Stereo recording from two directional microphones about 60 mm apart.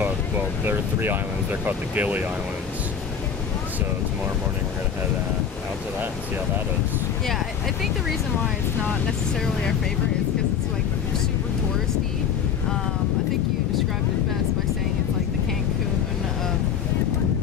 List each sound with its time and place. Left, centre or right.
0.7 s speech: right